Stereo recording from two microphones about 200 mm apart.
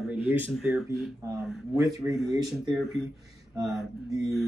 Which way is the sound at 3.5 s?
15° right (ahead or behind).